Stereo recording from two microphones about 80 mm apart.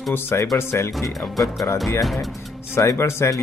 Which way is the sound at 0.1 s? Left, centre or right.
Left.